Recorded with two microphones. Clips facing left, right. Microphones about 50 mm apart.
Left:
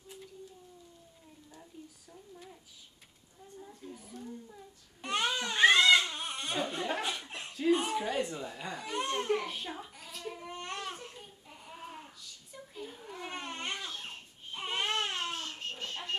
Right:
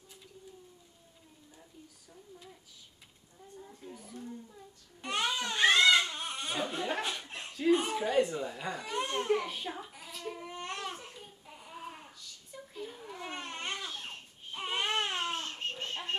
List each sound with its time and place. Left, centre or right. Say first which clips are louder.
3.8 s speech: left 1 dB; centre
5.0 s baby cry: left 1 dB; centre
6.0 s a sound: even; centre
15.3 s baby cry: right 2 dB; right